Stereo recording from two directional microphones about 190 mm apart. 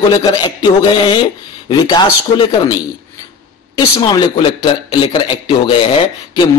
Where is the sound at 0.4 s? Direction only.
25° left (ahead or behind).